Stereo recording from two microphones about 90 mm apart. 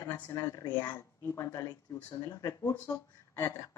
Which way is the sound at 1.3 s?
30° left (ahead or behind).